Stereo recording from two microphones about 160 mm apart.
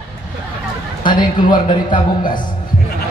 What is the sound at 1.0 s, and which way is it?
A man's voice, 30° left (ahead or behind).